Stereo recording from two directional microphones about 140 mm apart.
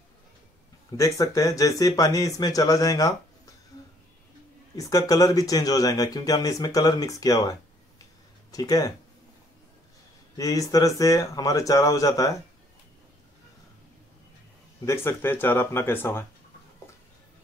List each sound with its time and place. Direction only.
0.9 s speech: 20° left (ahead or behind)
4.7 s speech: 25° left (ahead or behind)
10.3 s speech: 25° left (ahead or behind)
14.9 s speech: 15° left (ahead or behind)